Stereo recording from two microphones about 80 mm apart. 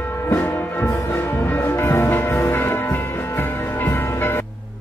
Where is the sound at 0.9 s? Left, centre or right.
Left.